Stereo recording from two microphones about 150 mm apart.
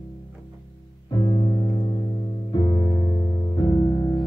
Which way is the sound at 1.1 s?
30° left (ahead or behind).